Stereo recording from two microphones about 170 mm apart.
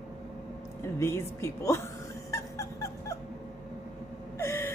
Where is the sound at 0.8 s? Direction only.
15° left (ahead or behind).